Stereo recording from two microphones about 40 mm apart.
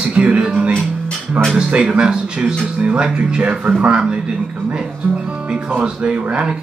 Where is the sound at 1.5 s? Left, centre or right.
Right.